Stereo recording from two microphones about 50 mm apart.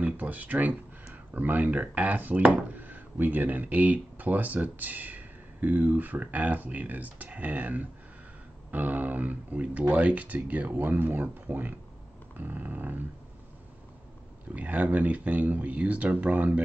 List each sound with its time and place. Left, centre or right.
0.0 s speech: right
14.5 s speech: right